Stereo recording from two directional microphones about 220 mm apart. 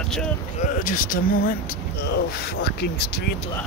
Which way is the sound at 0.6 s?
40° left (ahead or behind).